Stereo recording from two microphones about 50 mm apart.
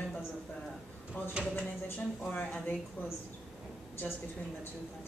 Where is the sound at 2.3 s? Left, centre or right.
Left.